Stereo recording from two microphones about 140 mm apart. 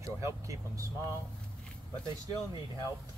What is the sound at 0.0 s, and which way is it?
Speech, 20° right (ahead or behind).